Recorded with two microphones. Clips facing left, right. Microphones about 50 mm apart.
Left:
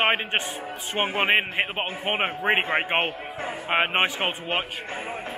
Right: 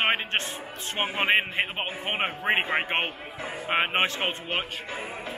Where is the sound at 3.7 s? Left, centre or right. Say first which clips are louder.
Left 2 dB; centre.